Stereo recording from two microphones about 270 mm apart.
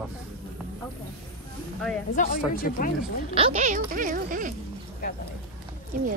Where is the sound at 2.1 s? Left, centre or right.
Left.